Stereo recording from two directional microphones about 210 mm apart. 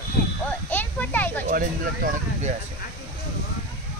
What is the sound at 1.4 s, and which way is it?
Speech, 40° right (ahead or behind).